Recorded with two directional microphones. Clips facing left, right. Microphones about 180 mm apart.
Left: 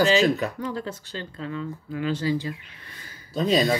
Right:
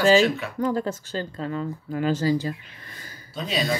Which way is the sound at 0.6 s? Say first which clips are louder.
Right 6 dB; 45° right (ahead or behind).